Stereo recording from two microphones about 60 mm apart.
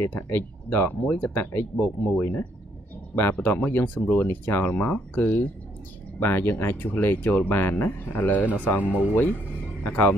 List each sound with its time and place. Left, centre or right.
0.0 s speech: left
6.1 s speech: left